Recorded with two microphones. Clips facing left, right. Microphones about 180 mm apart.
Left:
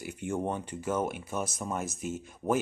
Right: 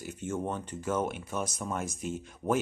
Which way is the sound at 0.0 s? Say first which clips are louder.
Left 2 dB; 10° left (ahead or behind).